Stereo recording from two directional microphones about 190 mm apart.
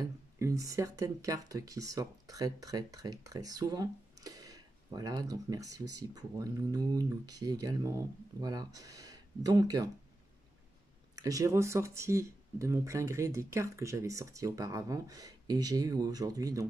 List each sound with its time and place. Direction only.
0.0 s speech: 15° right (ahead or behind)
11.1 s speech: 20° right (ahead or behind)